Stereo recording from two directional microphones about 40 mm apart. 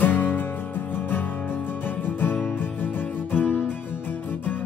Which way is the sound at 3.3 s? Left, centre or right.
Left.